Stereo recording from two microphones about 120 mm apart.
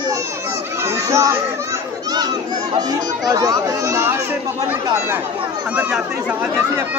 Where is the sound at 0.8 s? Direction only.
25° right (ahead or behind).